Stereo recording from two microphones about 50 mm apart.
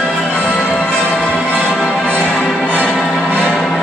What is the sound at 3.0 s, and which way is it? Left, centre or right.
Music, centre.